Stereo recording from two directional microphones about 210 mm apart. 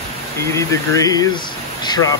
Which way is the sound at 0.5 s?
15° left (ahead or behind).